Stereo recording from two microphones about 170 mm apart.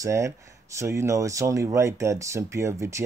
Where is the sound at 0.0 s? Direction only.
15° right (ahead or behind).